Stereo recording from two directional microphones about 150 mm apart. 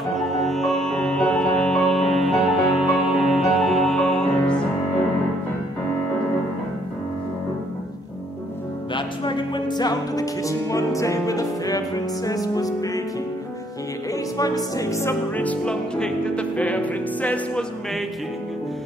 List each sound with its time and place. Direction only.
0.2 s music: centre (ahead or behind)
8.9 s music: 30° left (ahead or behind)
14.1 s music: 25° left (ahead or behind); by 18.0 s 10° left (ahead or behind)